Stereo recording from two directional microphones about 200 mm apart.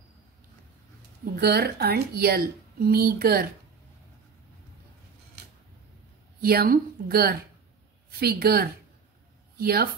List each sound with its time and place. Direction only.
1.2 s a woman's voice: 50° right (ahead or behind)
6.4 s a woman's voice: 50° right (ahead or behind)